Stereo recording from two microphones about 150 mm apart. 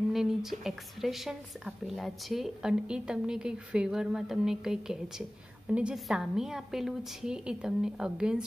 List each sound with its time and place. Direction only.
0.1 s a woman's voice: 5° right (ahead or behind)